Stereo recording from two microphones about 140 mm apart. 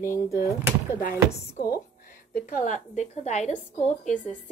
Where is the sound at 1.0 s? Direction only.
80° left.